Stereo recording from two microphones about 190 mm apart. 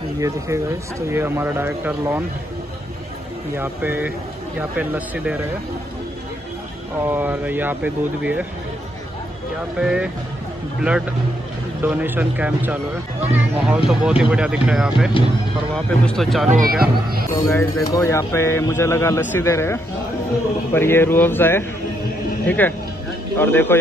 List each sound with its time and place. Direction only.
0.2 s speech: 15° right (ahead or behind)
3.5 s speech: 10° right (ahead or behind)
7.1 s speech: 10° right (ahead or behind)
9.8 s speech: 5° right (ahead or behind)
16.4 s speech: 45° right (ahead or behind)
17.4 s a man's voice: 15° left (ahead or behind)